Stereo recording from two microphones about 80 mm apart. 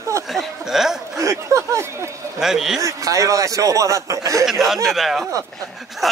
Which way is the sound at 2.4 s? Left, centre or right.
Centre.